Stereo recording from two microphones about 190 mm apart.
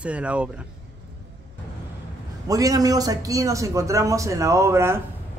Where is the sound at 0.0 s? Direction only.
5° right (ahead or behind).